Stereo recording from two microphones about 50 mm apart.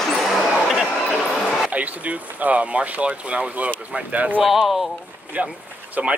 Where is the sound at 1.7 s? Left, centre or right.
Right.